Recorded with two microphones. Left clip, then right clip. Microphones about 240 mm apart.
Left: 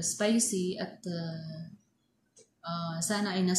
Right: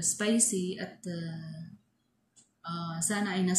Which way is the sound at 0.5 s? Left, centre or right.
Centre.